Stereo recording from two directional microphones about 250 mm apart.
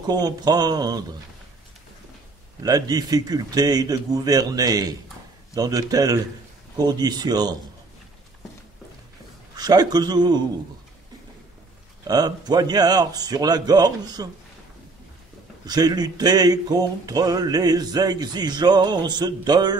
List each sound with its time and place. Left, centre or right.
0.0 s speech: centre
2.6 s speech: centre
9.6 s speech: centre
12.1 s speech: centre
15.6 s speech: centre